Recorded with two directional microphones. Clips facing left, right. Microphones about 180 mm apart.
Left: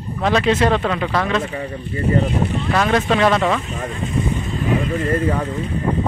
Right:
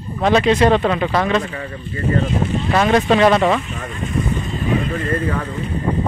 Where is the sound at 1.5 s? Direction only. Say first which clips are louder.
Left 2 dB; 15° left (ahead or behind).